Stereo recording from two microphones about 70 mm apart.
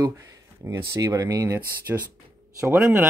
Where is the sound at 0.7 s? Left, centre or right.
Right.